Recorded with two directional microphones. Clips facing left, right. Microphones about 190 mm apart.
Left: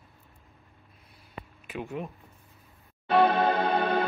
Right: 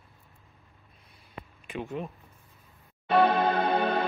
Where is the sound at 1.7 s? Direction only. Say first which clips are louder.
Even; 5° left (ahead or behind).